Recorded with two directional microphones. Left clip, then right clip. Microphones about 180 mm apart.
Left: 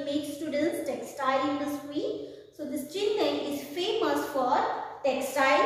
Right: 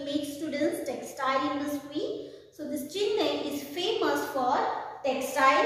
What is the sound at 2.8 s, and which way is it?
A woman's voice, 20° right (ahead or behind).